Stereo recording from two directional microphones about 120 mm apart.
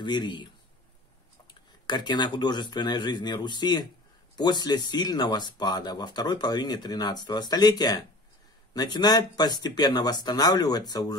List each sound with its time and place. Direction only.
0.0 s speech: 40° left (ahead or behind)
1.5 s speech: 40° left (ahead or behind)